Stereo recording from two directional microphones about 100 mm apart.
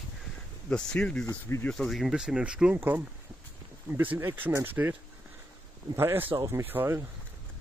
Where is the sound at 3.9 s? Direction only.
20° right (ahead or behind).